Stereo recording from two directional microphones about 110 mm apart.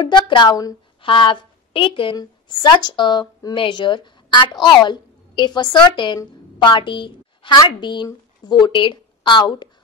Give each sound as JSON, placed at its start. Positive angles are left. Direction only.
{"t": 0.0, "sound": "a woman's voice", "side_deg": 45}
{"t": 1.0, "sound": "a woman's voice", "side_deg": 50}